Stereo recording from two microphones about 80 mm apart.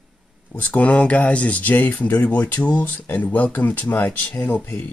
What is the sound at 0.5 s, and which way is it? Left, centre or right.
Speech, left.